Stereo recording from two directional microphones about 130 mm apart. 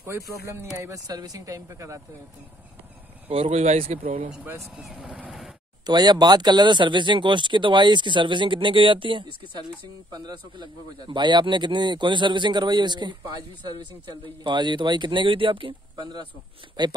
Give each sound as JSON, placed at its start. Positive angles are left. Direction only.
{"t": 0.0, "sound": "speech", "side_deg": -20}
{"t": 3.3, "sound": "speech", "side_deg": -50}
{"t": 4.7, "sound": "speech", "side_deg": 0}
{"t": 5.9, "sound": "a man's voice", "side_deg": -35}